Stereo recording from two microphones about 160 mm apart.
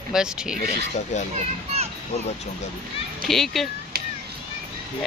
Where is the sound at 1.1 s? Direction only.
45° left (ahead or behind).